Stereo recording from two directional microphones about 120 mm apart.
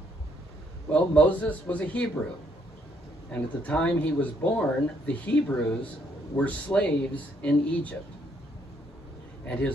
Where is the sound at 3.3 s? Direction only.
10° left (ahead or behind).